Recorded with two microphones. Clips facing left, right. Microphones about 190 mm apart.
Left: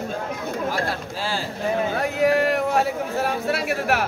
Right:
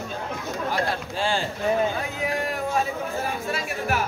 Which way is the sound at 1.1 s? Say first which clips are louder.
Right 6 dB; 5° left (ahead or behind).